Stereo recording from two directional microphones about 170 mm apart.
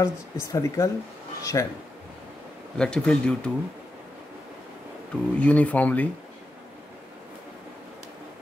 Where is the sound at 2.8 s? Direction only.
5° left (ahead or behind).